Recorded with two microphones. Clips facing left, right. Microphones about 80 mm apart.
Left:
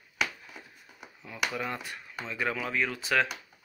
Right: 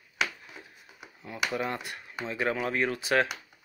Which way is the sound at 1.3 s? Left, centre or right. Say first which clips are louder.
Right 2 dB; centre.